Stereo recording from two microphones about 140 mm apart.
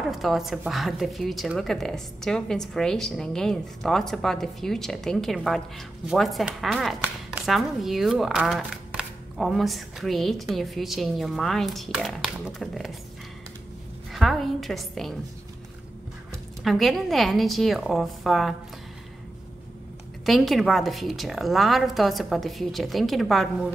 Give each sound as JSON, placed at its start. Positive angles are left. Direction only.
{"t": 0.1, "sound": "a woman's voice", "side_deg": 0}
{"t": 14.1, "sound": "a woman's voice", "side_deg": 0}
{"t": 16.6, "sound": "a woman's voice", "side_deg": 0}
{"t": 20.2, "sound": "a woman's voice", "side_deg": 0}